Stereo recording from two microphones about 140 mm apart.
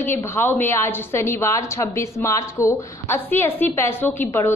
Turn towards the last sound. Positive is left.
turn(degrees=15)  # may be behind; listen again after turning